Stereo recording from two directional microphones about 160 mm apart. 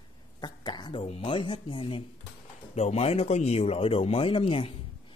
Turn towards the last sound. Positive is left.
turn(degrees=35)  # may be behind; listen again after turning